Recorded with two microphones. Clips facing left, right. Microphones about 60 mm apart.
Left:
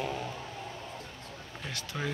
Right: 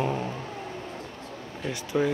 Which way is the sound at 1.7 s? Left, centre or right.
Centre.